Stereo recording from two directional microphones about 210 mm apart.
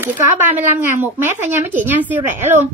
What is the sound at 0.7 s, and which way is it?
A woman's voice, 10° right (ahead or behind).